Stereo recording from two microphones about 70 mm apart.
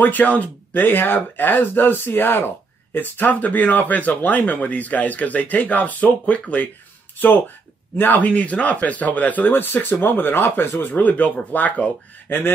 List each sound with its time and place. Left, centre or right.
0.0 s speech: left